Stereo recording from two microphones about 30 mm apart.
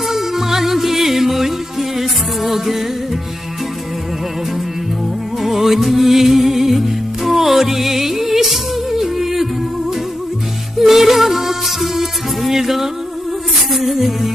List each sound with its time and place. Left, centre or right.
0.1 s music: centre
5.4 s music: centre
10.8 s music: centre